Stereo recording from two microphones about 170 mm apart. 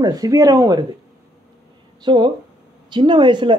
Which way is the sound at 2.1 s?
30° right (ahead or behind).